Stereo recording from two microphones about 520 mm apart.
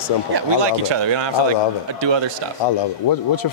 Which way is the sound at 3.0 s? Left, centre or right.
Left.